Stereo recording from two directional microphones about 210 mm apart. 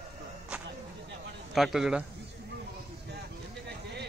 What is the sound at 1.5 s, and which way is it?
Speech, centre (ahead or behind).